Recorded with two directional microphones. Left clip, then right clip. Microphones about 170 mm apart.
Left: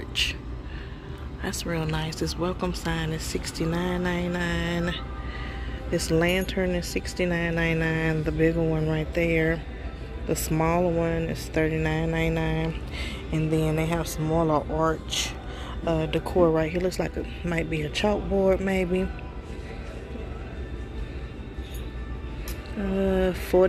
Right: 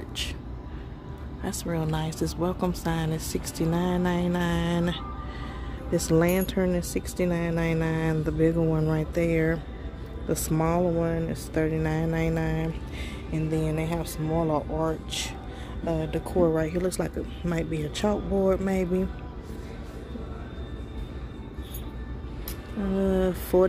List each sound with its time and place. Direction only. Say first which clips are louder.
0.1 s a sound: left 8 dB; 15° right (ahead or behind)
1.4 s speech: left 1 dB; 15° right (ahead or behind)
11.1 s speech: left 1 dB; 5° right (ahead or behind)
22.9 s speech: left 1 dB; 15° right (ahead or behind)